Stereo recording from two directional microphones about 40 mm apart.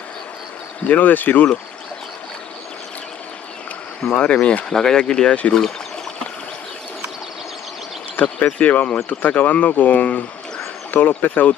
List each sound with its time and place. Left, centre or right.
0.8 s speech: left
4.1 s speech: left
4.7 s speech: centre
8.2 s speech: left
10.9 s speech: left
11.2 s speech: left